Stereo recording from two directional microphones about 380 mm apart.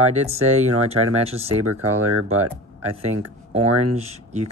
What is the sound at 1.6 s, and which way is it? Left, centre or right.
Speech, right.